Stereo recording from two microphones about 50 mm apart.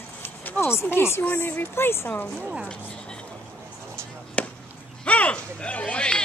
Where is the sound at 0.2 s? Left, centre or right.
Left.